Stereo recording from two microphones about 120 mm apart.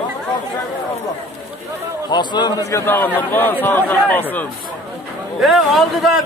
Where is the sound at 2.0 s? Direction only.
35° left (ahead or behind); by 4.4 s 15° left (ahead or behind).